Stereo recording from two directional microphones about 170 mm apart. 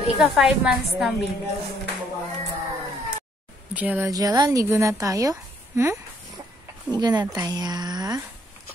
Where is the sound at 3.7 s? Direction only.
10° right (ahead or behind).